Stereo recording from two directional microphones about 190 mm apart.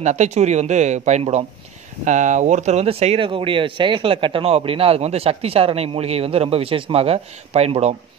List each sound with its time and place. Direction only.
0.0 s speech: 35° right (ahead or behind)